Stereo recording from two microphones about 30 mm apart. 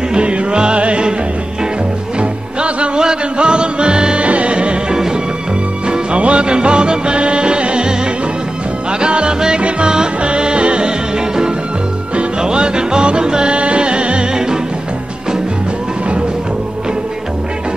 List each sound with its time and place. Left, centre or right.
0.1 s music: right
2.1 s music: right
3.0 s music: right
4.9 s music: right
6.1 s music: right
6.4 s music: right
12.4 s music: right